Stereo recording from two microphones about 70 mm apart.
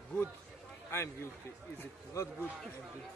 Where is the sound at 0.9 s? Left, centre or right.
Left.